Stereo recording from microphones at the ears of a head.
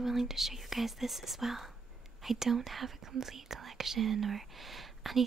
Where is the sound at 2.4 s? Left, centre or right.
Right.